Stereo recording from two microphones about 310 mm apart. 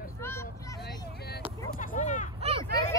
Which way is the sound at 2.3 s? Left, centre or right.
Centre.